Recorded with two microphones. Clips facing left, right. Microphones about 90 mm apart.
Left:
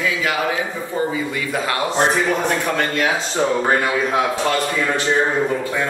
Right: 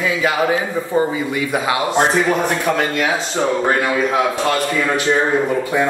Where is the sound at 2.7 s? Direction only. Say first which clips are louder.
Right 2 dB; 5° right (ahead or behind).